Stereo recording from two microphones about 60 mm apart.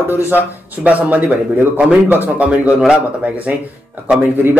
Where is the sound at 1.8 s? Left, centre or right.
Right.